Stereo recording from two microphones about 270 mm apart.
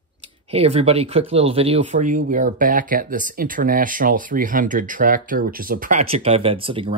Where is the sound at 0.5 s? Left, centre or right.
Right.